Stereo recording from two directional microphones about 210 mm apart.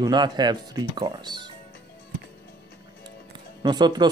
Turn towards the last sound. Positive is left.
turn(degrees=-20)  # may be behind; listen again after turning